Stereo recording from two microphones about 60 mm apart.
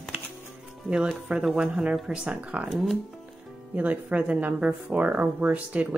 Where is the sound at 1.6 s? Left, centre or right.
Centre.